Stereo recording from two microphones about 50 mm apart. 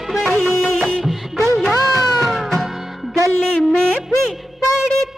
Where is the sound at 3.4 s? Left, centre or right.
Centre.